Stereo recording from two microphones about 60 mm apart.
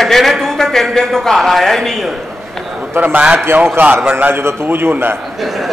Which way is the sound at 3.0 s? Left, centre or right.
Right.